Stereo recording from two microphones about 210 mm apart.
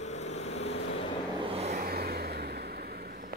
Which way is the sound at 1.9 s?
50° right (ahead or behind).